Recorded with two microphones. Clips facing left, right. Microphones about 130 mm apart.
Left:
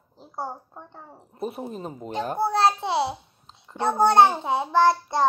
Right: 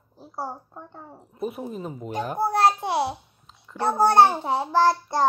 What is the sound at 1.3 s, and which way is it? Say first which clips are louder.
A child's voice: right 1 dB; 30° left (ahead or behind).